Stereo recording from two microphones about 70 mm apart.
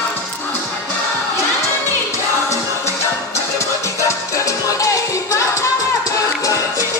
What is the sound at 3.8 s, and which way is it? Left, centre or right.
Music, left.